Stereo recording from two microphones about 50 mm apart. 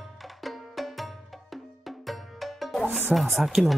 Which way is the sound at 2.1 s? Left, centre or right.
Centre.